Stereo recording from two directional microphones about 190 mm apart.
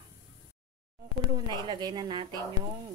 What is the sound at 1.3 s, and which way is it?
Speech, 20° right (ahead or behind).